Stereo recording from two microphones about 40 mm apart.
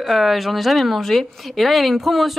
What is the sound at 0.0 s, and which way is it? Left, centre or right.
Speech, centre.